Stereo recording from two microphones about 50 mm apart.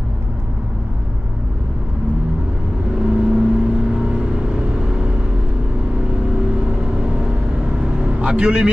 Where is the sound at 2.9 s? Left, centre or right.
Centre.